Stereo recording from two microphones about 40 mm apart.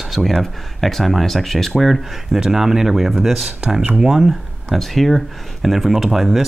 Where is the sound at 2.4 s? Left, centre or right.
Centre.